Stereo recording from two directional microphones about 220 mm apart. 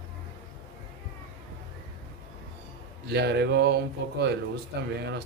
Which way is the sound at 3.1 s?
50° right (ahead or behind).